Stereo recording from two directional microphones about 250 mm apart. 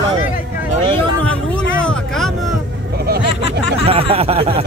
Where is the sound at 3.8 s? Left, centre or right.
Right.